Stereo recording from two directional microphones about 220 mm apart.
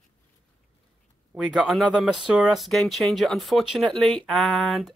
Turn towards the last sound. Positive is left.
turn(degrees=0)  # may be behind; listen again after turning